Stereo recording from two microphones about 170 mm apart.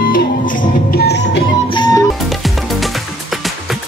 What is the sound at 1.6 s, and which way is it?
Music, 25° left (ahead or behind).